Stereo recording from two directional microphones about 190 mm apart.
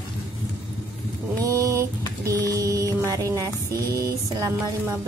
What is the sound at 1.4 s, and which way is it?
Mantra, 15° right (ahead or behind).